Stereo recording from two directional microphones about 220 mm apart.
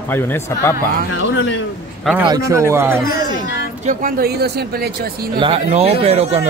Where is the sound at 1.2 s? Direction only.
55° left (ahead or behind).